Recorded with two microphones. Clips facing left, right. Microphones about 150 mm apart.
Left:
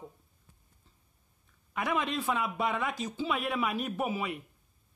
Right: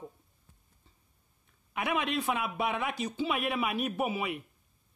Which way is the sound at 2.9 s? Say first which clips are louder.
Right 2 dB; 65° right (ahead or behind).